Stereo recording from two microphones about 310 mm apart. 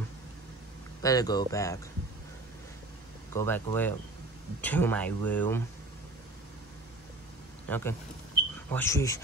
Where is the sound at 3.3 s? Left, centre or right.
Centre.